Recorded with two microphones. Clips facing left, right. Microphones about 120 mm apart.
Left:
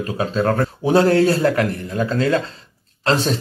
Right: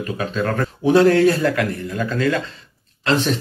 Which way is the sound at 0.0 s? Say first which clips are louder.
Left 3 dB; 30° left (ahead or behind).